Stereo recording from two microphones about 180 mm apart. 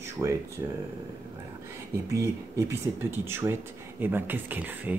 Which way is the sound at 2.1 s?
15° right (ahead or behind).